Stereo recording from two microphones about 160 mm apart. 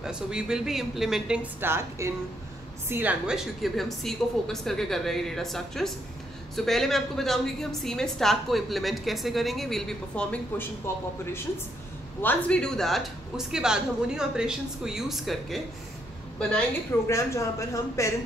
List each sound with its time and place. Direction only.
0.0 s a woman's voice: 5° right (ahead or behind)
12.2 s a woman's voice: 10° left (ahead or behind)
17.1 s speech: 20° left (ahead or behind)